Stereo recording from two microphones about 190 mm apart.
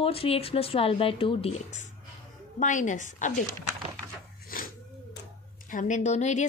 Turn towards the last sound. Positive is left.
turn(degrees=40)  # may be behind; listen again after turning